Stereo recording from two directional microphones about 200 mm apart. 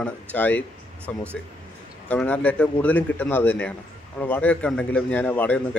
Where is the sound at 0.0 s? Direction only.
5° left (ahead or behind).